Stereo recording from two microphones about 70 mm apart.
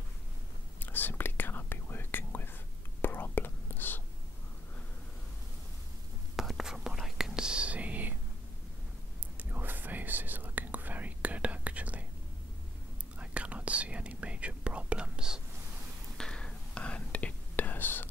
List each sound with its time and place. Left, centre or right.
0.7 s whispering: left
6.3 s whispering: centre
9.4 s whispering: right
13.2 s whispering: centre
16.2 s whispering: centre; by 18.0 s left